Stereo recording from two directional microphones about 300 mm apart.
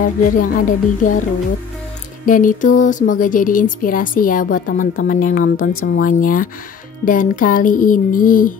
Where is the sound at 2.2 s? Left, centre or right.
Left.